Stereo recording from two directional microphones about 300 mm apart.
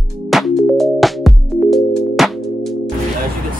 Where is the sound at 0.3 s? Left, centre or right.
Centre.